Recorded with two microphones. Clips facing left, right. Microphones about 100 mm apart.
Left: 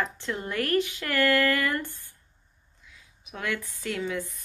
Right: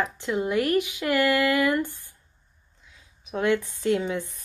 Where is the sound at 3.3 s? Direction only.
25° right (ahead or behind).